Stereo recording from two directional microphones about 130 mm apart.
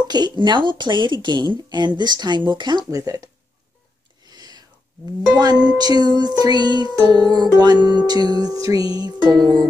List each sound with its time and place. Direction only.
0.0 s music: 35° right (ahead or behind)
2.9 s speech: 25° right (ahead or behind)
4.3 s whispering: 30° right (ahead or behind)
5.4 s music: 35° right (ahead or behind)